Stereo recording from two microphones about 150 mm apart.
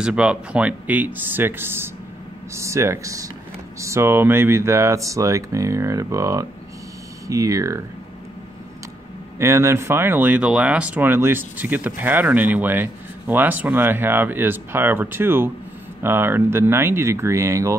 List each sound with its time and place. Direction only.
0.0 s speech: 5° right (ahead or behind)
9.4 s speech: 20° right (ahead or behind)